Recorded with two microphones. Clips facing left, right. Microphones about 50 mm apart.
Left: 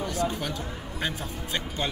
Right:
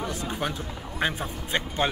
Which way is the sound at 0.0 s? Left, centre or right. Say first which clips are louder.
Left 1 dB; right.